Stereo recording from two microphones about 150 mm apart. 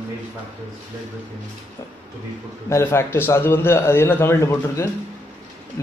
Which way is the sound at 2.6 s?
20° left (ahead or behind).